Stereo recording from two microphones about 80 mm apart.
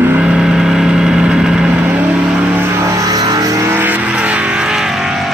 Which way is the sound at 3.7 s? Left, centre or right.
Right.